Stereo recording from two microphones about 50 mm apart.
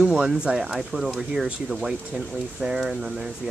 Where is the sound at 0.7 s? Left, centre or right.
Centre.